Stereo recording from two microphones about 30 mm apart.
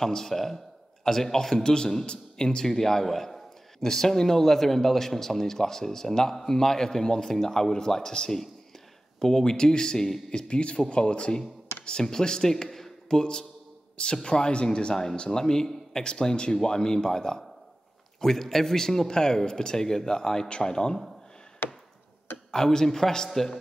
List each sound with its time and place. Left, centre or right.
0.0 s speech: centre
1.6 s speech: left
8.2 s speech: left
9.2 s speech: centre
10.3 s speech: left
12.6 s a sound: centre
13.1 s speech: left
21.6 s chop: left
22.5 s speech: centre